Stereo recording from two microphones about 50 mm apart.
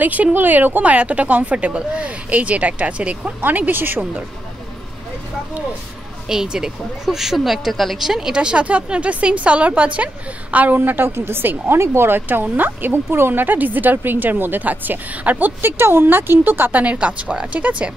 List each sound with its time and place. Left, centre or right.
0.0 s speech: right
6.2 s speech: centre
8.0 s speech: centre; by 10.8 s right
10.8 s a woman's voice: right
12.1 s a woman's voice: right
15.6 s a woman's voice: right
16.8 s speech: right